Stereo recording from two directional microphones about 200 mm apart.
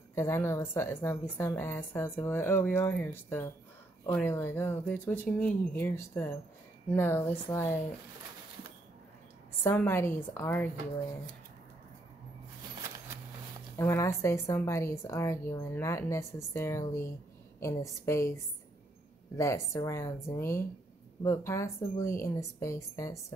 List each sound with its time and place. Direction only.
0.1 s a woman's voice: 10° left (ahead or behind)
9.6 s a woman's voice: 10° left (ahead or behind)
13.7 s a woman's voice: 15° left (ahead or behind)